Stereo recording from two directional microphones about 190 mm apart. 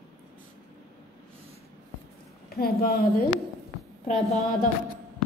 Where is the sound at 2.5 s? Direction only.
55° left (ahead or behind).